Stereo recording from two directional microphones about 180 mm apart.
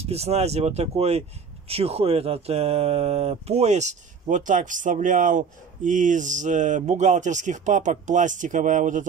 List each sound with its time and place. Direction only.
0.0 s speech: 35° right (ahead or behind)